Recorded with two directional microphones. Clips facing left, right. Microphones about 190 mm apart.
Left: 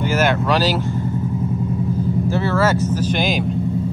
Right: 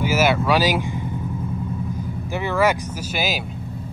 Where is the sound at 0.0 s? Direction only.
10° right (ahead or behind).